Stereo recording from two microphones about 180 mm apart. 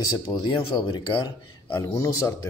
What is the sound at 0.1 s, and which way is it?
A man's voice, 20° left (ahead or behind).